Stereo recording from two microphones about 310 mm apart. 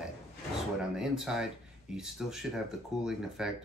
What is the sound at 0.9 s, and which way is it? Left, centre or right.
Speech, centre.